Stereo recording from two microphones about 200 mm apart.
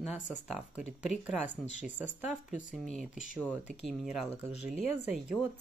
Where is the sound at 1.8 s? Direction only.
10° right (ahead or behind).